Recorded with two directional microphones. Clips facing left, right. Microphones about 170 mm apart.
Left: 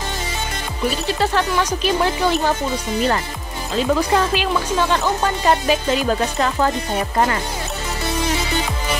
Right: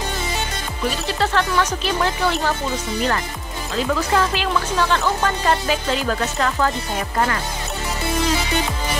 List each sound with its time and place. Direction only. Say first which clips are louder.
1.2 s speech: even; 10° left (ahead or behind)
3.7 s speech: left 3 dB; 20° left (ahead or behind)